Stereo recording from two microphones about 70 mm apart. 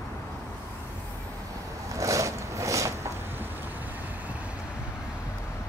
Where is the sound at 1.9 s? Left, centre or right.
Right.